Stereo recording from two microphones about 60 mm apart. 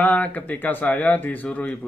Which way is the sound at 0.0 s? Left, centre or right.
Left.